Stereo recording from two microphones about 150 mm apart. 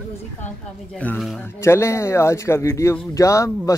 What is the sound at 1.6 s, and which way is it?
Speech, 15° left (ahead or behind).